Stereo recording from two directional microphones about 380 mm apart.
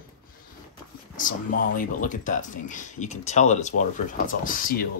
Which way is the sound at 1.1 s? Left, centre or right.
Left.